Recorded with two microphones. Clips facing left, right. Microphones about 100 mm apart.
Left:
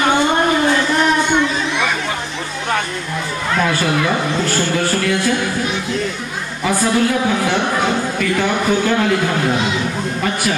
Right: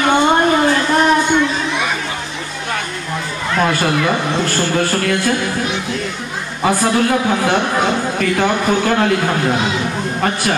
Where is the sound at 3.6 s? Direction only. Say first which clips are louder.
Right 2 dB; 45° right (ahead or behind).